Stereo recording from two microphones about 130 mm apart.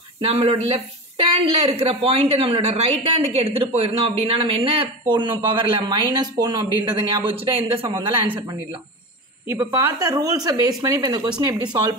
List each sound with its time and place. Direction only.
0.2 s speech: 45° right (ahead or behind)
9.5 s speech: 25° right (ahead or behind)